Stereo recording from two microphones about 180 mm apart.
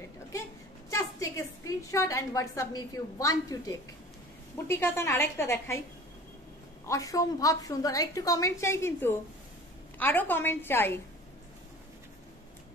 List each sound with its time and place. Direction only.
0.8 s a woman's voice: 15° left (ahead or behind)
6.9 s a woman's voice: 20° left (ahead or behind)